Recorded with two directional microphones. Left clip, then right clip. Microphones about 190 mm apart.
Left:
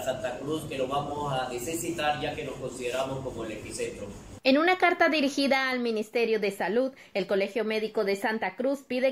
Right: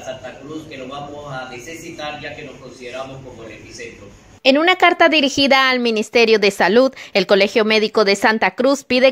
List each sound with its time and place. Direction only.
4.4 s a woman's voice: 40° right (ahead or behind)